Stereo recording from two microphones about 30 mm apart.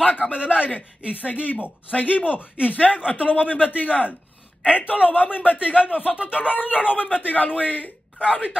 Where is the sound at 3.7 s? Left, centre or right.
Left.